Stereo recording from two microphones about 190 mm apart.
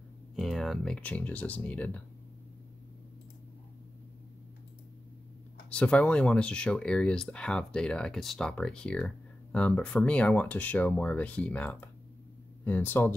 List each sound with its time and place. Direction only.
0.4 s speech: centre (ahead or behind)
5.7 s speech: 5° left (ahead or behind)